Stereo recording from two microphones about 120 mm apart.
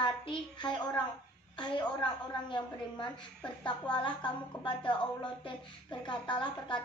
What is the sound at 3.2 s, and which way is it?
Speech, 10° left (ahead or behind).